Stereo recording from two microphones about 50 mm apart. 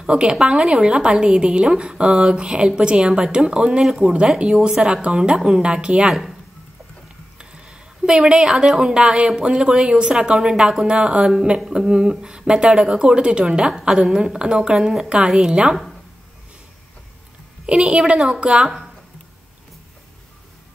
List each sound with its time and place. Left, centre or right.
0.0 s a woman's voice: centre
7.3 s speech: centre
17.6 s a woman's voice: centre